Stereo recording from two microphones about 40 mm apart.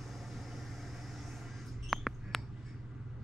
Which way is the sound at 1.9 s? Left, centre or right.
Centre.